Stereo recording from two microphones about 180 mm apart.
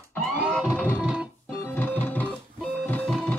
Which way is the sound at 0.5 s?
5° left (ahead or behind).